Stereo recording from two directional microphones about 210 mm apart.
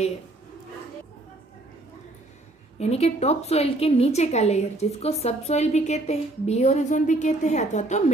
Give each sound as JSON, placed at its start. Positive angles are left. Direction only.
{"t": 2.8, "sound": "a woman's voice", "side_deg": 30}